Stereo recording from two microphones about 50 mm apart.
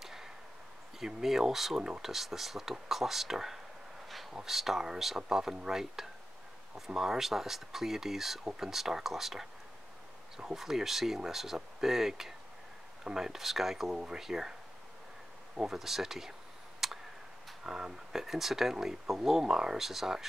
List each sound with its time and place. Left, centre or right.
0.0 s a sound: centre
0.9 s speech: centre
15.5 s speech: centre
16.8 s tick: centre
17.6 s speech: centre